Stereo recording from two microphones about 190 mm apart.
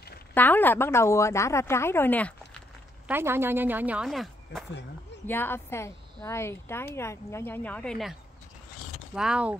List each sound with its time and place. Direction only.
0.3 s a woman's voice: 10° left (ahead or behind)
3.1 s speech: 10° right (ahead or behind)
5.2 s a woman's voice: 10° left (ahead or behind); by 9.6 s 5° right (ahead or behind)